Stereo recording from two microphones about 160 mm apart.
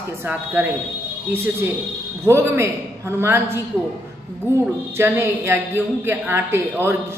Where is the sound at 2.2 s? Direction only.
15° right (ahead or behind).